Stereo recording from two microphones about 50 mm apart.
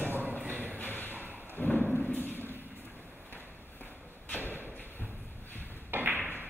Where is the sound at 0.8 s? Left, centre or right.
Left.